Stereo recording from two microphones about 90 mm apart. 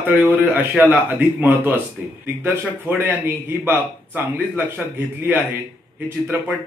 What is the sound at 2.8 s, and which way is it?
A man's voice, 20° right (ahead or behind).